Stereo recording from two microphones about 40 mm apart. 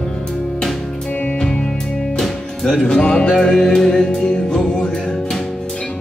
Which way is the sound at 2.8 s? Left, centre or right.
Left.